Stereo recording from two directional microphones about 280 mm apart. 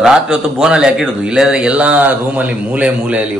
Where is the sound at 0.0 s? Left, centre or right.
Centre.